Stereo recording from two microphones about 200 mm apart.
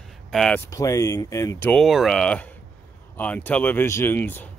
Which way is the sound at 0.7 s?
15° left (ahead or behind).